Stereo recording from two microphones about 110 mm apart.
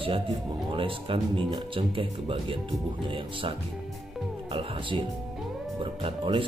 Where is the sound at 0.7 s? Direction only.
55° right (ahead or behind).